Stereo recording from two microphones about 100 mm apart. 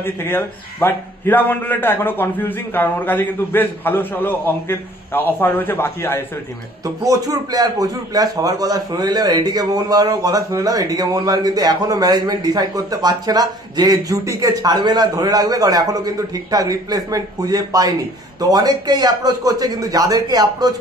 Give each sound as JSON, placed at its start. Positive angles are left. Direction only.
{"t": 0.0, "sound": "a man's voice", "side_deg": 20}
{"t": 7.0, "sound": "a man's voice", "side_deg": -35}